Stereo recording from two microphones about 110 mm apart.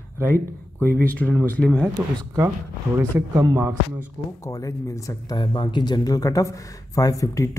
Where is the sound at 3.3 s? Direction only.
35° right (ahead or behind).